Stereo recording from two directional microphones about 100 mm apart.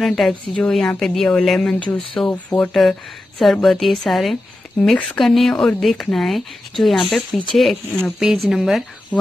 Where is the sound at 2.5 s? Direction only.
55° left (ahead or behind).